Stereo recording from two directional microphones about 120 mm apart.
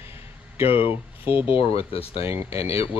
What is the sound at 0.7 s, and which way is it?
Speech, 50° left (ahead or behind).